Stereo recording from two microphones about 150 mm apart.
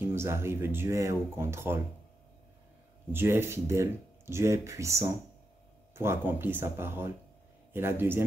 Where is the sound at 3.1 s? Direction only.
15° right (ahead or behind).